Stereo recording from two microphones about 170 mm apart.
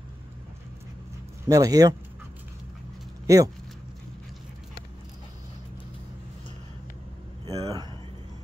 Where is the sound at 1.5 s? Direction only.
20° right (ahead or behind).